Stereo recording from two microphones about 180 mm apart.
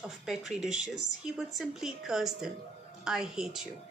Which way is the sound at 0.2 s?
Centre (ahead or behind).